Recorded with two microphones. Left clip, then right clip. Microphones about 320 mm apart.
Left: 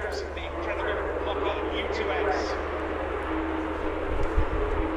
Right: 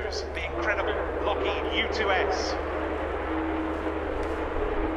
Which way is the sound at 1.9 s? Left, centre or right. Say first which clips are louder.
Even; right.